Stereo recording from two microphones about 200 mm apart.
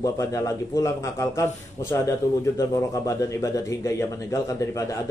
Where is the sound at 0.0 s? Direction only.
15° left (ahead or behind).